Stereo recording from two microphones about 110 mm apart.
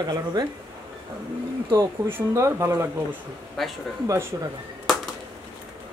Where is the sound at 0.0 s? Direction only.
35° right (ahead or behind).